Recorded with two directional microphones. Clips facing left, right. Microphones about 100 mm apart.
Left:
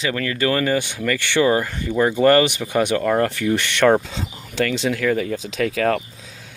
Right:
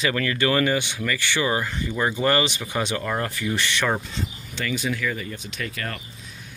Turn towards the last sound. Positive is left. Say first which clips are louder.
# left 12 dB
turn(degrees=90)